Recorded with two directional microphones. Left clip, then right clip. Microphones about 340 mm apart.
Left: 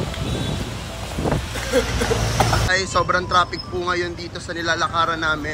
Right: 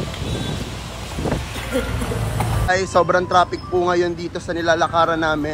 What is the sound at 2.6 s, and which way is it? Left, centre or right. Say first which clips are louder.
Speech: right 2 dB; centre.